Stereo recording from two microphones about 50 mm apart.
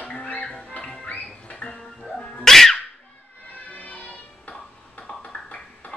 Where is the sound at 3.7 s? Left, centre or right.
Left.